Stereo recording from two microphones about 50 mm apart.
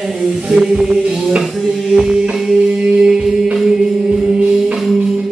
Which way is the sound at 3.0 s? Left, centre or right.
Centre.